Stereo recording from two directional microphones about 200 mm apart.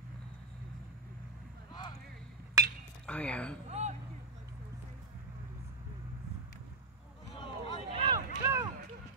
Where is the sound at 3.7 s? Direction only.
35° right (ahead or behind).